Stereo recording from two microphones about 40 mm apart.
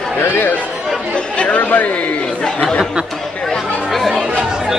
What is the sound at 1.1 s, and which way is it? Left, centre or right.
Chatter, left.